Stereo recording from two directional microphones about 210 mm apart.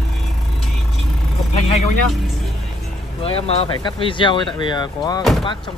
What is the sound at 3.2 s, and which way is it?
Speech, 30° left (ahead or behind).